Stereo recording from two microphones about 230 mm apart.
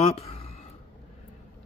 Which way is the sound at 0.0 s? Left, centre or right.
Left.